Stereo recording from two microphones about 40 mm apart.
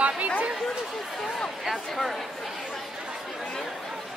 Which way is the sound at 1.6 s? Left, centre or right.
Centre.